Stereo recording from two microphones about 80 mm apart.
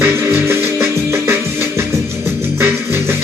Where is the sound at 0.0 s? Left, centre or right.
Right.